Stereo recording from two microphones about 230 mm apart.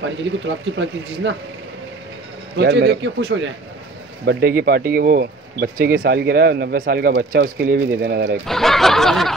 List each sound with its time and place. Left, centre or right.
0.0 s speech: right
2.5 s speech: right
8.5 s snicker: centre